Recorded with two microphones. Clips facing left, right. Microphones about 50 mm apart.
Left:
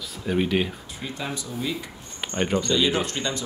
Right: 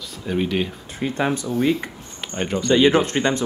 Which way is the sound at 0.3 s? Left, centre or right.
Centre.